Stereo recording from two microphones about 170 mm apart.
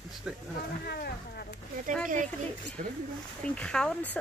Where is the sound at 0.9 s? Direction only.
70° left (ahead or behind).